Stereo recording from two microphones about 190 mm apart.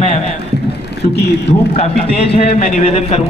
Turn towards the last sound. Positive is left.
turn(degrees=35)  # may be behind; listen again after turning